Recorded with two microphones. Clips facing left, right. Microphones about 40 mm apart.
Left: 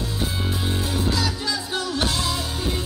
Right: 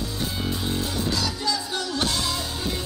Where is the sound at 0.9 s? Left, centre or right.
Centre.